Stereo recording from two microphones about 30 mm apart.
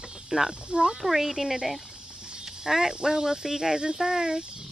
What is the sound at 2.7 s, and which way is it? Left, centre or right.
Speech, centre.